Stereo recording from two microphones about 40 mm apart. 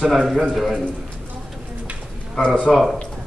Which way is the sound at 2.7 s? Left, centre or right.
Centre.